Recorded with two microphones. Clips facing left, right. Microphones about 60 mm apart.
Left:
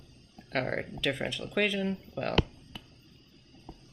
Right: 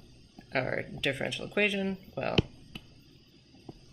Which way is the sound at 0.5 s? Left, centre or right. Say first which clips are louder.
Even; right.